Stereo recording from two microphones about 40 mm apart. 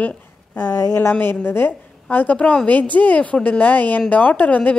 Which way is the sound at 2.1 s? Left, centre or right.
Left.